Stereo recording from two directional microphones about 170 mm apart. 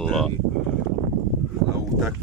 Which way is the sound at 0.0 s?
Centre (ahead or behind).